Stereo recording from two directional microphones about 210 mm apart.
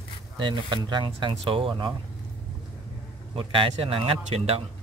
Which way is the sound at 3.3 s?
25° right (ahead or behind).